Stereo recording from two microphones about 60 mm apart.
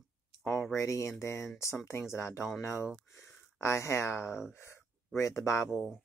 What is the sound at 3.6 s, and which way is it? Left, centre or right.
Speech, left.